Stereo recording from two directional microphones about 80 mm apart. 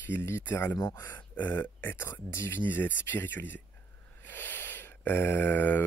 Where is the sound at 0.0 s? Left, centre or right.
Left.